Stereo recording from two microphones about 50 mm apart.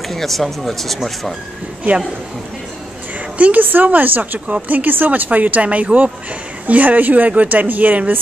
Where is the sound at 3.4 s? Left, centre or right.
Right.